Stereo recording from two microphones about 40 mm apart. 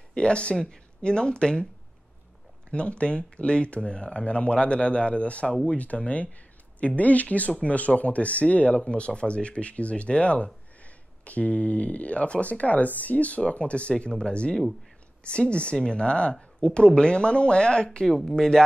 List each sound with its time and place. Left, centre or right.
0.1 s speech: left
2.7 s speech: left